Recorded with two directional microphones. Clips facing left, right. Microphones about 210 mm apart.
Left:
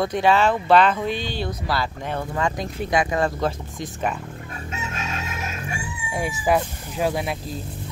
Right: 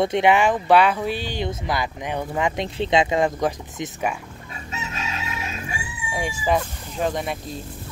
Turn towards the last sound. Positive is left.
turn(degrees=0)  # may be behind; listen again after turning